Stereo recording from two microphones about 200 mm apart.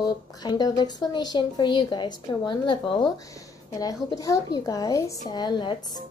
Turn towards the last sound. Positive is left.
turn(degrees=20)  # may be behind; listen again after turning